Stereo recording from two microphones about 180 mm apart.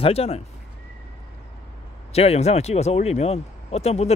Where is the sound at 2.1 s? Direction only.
35° left (ahead or behind).